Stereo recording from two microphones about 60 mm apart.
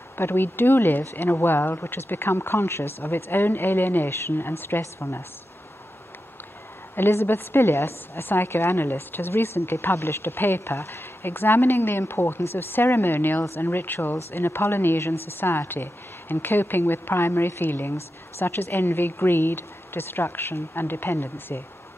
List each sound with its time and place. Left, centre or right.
0.2 s a woman's voice: left
7.0 s a woman's voice: left